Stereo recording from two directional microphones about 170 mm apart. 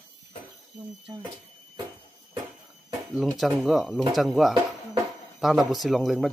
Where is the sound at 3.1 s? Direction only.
Centre (ahead or behind).